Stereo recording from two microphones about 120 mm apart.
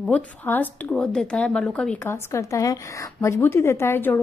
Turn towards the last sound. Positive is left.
turn(degrees=15)  # may be behind; listen again after turning